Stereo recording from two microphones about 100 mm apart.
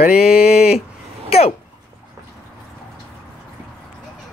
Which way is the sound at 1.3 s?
90° left.